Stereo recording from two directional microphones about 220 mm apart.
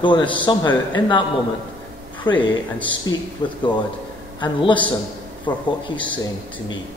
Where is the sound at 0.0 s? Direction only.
20° left (ahead or behind).